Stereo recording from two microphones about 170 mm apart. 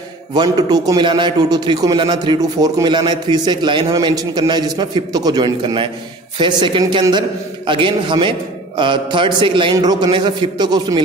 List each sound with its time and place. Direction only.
0.3 s a man's voice: 25° right (ahead or behind)